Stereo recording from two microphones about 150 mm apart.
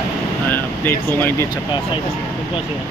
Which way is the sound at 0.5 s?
15° left (ahead or behind).